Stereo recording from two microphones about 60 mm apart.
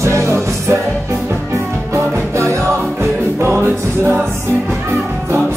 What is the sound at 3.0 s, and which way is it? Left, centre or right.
Music, right.